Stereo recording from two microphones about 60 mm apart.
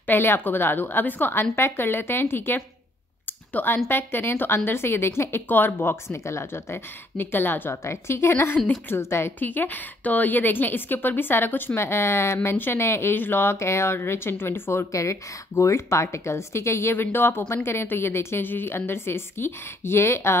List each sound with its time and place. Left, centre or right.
0.0 s a woman's voice: left
3.3 s a sound: left
3.9 s a woman's voice: left
5.5 s a woman's voice: left
6.1 s a woman's voice: left
7.7 s a woman's voice: left
9.0 s a woman's voice: left
9.4 s a woman's voice: left
14.9 s a woman's voice: left
18.4 s a woman's voice: left